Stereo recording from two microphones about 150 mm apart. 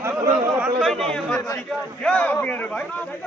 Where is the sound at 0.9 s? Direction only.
5° left (ahead or behind).